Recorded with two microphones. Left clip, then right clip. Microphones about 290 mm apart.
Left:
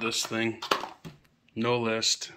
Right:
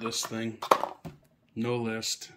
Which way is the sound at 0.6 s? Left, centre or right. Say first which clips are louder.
Right 4 dB; centre.